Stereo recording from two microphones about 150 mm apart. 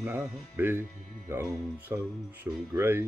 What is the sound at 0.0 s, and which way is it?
Speech, 15° right (ahead or behind).